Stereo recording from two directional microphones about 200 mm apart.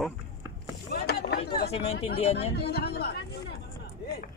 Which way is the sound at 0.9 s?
55° left (ahead or behind).